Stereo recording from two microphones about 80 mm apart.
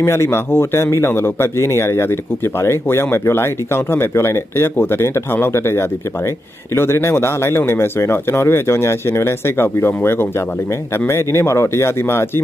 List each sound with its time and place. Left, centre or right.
0.0 s speech: left